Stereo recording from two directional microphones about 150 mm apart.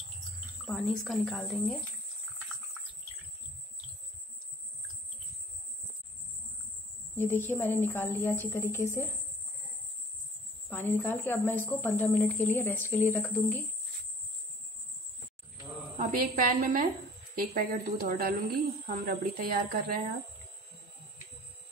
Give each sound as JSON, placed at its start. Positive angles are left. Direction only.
{"t": 0.7, "sound": "speech", "side_deg": 0}
{"t": 7.2, "sound": "a woman's voice", "side_deg": 15}
{"t": 10.7, "sound": "a woman's voice", "side_deg": 10}
{"t": 16.0, "sound": "a woman's voice", "side_deg": -65}
{"t": 17.4, "sound": "speech", "side_deg": -75}
{"t": 18.9, "sound": "speech", "side_deg": -85}